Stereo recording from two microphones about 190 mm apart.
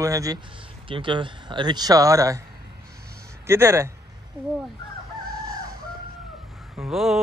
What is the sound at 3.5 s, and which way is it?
Speech, 15° right (ahead or behind).